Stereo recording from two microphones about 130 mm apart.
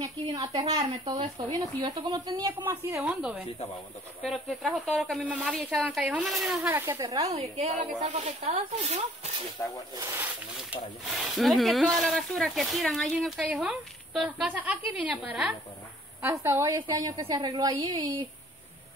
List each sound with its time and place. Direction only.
0.7 s a woman's voice: 45° right (ahead or behind)
2.6 s a woman's voice: 15° right (ahead or behind)
6.7 s speech: 20° right (ahead or behind)
7.3 s speech: 55° right (ahead or behind)
8.0 s speech: 65° right (ahead or behind)
9.6 s speech: 20° left (ahead or behind)
9.9 s speech: 25° right (ahead or behind)
11.1 s a woman's voice: centre (ahead or behind)
16.2 s speech: 20° right (ahead or behind)
16.7 s a woman's voice: 30° right (ahead or behind)